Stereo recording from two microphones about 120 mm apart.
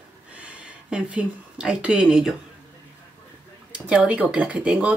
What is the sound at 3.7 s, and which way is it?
Speech, 10° right (ahead or behind).